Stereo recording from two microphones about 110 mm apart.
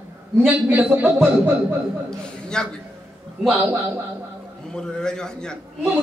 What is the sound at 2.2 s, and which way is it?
Speech, 5° left (ahead or behind).